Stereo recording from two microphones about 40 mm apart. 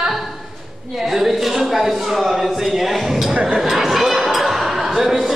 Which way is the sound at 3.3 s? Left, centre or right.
Centre.